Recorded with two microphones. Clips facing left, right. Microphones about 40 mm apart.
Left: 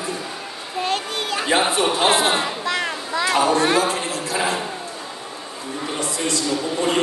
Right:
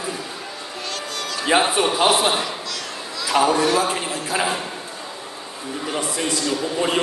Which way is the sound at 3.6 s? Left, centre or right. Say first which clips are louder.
Left 1 dB; left.